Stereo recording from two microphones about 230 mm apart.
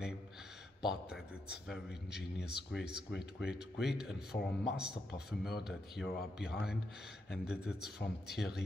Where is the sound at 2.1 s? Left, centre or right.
Left.